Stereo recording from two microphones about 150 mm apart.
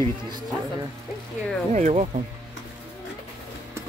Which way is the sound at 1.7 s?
50° right (ahead or behind).